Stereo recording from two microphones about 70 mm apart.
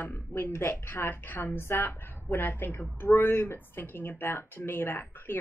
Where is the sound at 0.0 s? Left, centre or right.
Left.